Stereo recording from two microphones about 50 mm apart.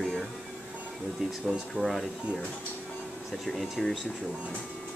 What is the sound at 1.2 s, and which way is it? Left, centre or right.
Speech, centre.